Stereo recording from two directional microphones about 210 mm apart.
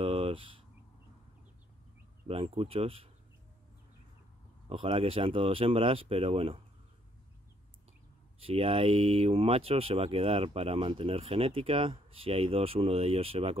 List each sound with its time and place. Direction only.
0.0 s a sound: 25° right (ahead or behind)
2.2 s speech: 25° right (ahead or behind)
4.6 s speech: 25° right (ahead or behind)
8.4 s speech: 25° right (ahead or behind)